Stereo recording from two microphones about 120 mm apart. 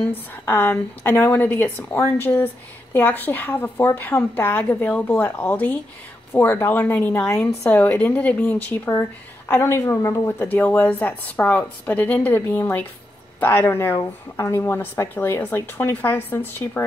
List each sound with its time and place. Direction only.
0.0 s a woman's voice: 15° left (ahead or behind)